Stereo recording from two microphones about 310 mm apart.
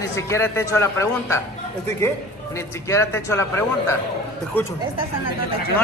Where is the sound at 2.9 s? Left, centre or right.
Centre.